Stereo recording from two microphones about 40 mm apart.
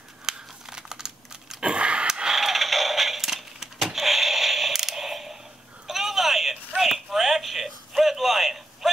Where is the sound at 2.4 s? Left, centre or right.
Centre.